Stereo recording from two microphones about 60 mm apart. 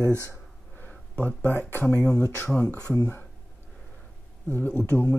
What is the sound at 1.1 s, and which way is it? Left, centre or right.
Speech, left.